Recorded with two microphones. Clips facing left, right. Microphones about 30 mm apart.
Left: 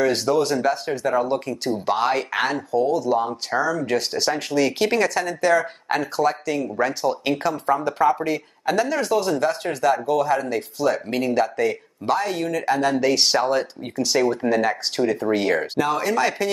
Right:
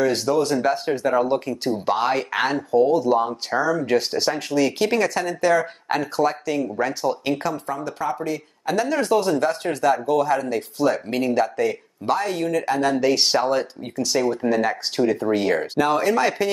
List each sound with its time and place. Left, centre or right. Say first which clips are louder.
0.0 s speech: even; centre
0.6 s speech: right 1 dB; centre
1.9 s speech: even; centre
7.6 s speech: left 7 dB; left
8.7 s speech: right 2 dB; centre
15.8 s speech: right 3 dB; centre